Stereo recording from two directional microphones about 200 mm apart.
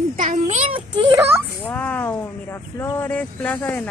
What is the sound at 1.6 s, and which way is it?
Speech, 10° left (ahead or behind).